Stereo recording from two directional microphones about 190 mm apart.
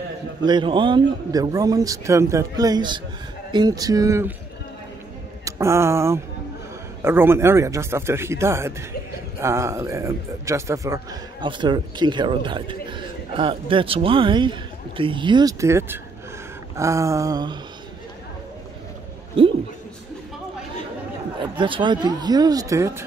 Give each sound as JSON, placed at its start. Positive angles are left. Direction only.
{"t": 0.4, "sound": "a man's voice", "side_deg": -25}
{"t": 5.4, "sound": "speech", "side_deg": -15}
{"t": 21.5, "sound": "a man's voice", "side_deg": -25}